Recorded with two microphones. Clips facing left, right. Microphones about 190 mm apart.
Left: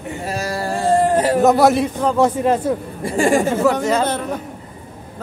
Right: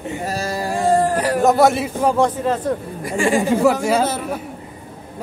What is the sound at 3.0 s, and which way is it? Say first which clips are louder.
Speech: left 3 dB; 40° left (ahead or behind).